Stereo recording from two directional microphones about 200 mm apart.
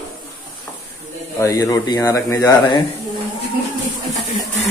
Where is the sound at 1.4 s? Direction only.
15° left (ahead or behind).